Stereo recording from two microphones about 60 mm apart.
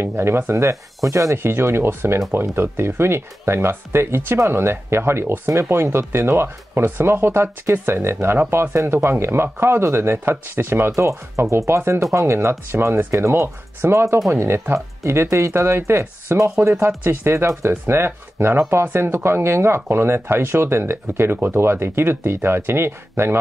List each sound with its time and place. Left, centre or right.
0.0 s speech: right
1.3 s speech: right
10.9 s speech: right
16.8 s speech: right